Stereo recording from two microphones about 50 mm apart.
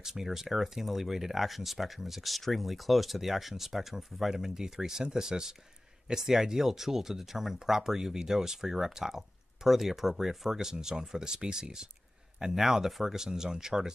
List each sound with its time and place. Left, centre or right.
0.0 s speech: centre